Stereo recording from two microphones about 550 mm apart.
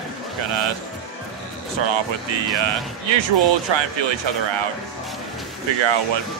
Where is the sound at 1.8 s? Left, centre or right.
Right.